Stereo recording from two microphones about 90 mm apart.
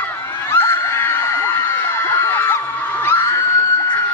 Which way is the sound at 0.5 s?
30° left (ahead or behind).